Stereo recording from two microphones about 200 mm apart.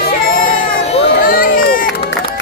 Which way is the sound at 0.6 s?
30° left (ahead or behind).